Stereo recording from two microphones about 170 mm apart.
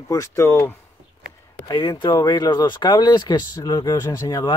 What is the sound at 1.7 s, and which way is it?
Speech, 25° left (ahead or behind).